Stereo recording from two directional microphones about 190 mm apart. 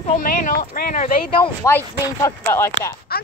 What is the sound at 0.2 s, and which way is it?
Speech, 45° left (ahead or behind).